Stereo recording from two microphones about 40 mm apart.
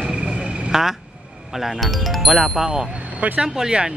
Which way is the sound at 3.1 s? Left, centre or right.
Right.